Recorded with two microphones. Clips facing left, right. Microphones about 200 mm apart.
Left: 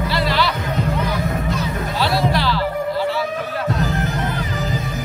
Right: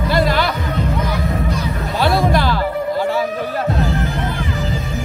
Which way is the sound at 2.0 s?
50° right (ahead or behind).